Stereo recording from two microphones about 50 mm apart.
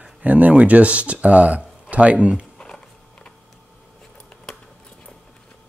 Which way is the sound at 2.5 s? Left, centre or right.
Centre.